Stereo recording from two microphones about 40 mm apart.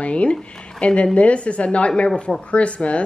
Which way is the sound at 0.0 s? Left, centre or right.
Left.